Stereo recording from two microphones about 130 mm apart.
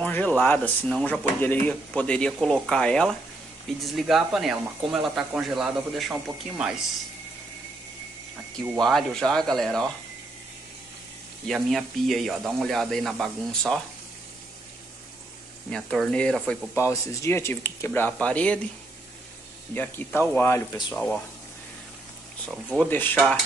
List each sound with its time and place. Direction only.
0.0 s speech: 10° left (ahead or behind); by 6.3 s 5° right (ahead or behind)
8.7 s speech: 5° left (ahead or behind)
11.4 s speech: centre (ahead or behind)
15.7 s speech: 5° left (ahead or behind)
16.7 s speech: 25° left (ahead or behind)
19.7 s speech: 15° left (ahead or behind)
22.8 s speech: 15° left (ahead or behind)